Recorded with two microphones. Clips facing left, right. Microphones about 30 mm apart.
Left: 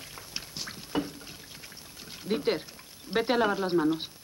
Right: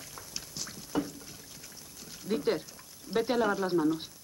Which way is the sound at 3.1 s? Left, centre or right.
Left.